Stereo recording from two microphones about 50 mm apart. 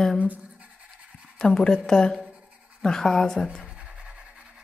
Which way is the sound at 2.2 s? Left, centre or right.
Right.